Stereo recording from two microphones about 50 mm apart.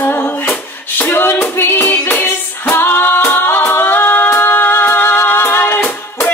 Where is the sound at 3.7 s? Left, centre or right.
Left.